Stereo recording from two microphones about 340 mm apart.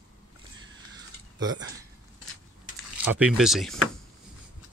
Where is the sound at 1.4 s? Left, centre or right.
Centre.